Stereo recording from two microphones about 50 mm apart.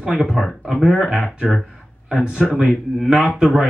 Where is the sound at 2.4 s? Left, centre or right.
Centre.